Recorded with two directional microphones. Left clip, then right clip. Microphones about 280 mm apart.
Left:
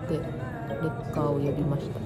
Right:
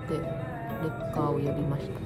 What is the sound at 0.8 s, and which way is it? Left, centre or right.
Speech, centre.